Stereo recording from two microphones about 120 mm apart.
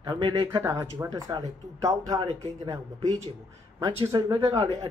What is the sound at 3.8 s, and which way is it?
Speech, 30° right (ahead or behind).